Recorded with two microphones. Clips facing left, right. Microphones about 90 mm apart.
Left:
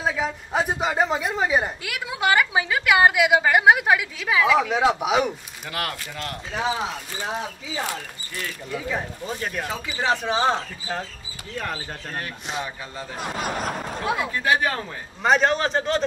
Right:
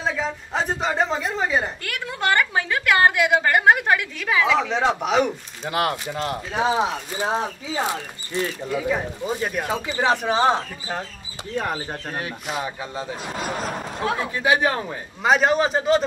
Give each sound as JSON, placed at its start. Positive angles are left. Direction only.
{"t": 0.0, "sound": "speech", "side_deg": 5}
{"t": 5.7, "sound": "speech", "side_deg": -25}
{"t": 8.7, "sound": "speech", "side_deg": -10}
{"t": 9.7, "sound": "speech", "side_deg": -30}
{"t": 10.0, "sound": "speech", "side_deg": -15}
{"t": 11.5, "sound": "speech", "side_deg": -20}
{"t": 14.0, "sound": "a man's voice", "side_deg": 10}
{"t": 14.4, "sound": "speech", "side_deg": -15}
{"t": 15.2, "sound": "speech", "side_deg": -5}